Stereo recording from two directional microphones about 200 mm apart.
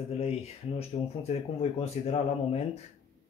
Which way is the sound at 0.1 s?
30° left (ahead or behind).